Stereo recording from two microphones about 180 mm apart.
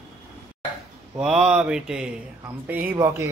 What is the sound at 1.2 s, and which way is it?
Speech, 5° right (ahead or behind).